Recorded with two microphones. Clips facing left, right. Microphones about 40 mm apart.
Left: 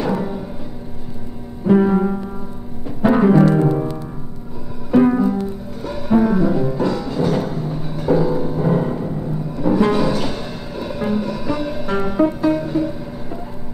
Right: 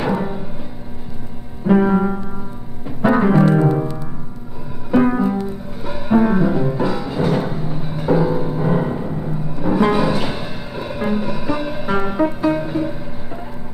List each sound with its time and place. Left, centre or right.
0.0 s music: centre
1.7 s music: centre
4.9 s music: centre